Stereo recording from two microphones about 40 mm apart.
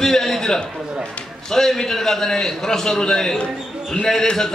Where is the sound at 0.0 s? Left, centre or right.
Centre.